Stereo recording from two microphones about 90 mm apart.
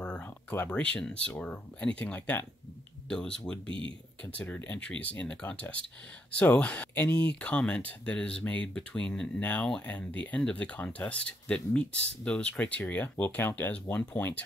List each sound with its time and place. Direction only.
0.0 s speech: 15° left (ahead or behind)
3.6 s speech: 70° right (ahead or behind)
4.2 s speech: 15° left (ahead or behind)